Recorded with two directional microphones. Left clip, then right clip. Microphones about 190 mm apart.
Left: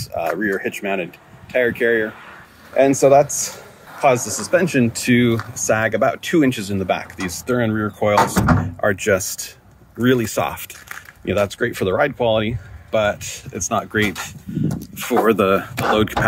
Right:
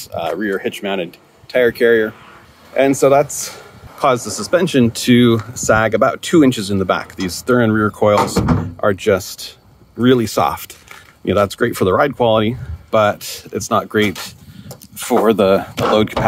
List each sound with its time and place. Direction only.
0.3 s speech: 15° right (ahead or behind); by 2.0 s 35° right (ahead or behind)
2.7 s speech: 10° right (ahead or behind)
4.0 s speech: 25° right (ahead or behind)
8.8 s speech: 20° right (ahead or behind)
9.9 s speech: 25° right (ahead or behind)
11.2 s speech: 50° right (ahead or behind)